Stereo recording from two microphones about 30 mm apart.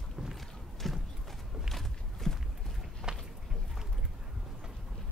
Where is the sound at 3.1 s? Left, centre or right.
Right.